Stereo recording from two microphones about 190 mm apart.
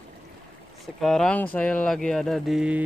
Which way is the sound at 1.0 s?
5° left (ahead or behind).